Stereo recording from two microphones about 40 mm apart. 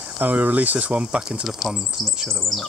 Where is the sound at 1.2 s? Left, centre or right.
Centre.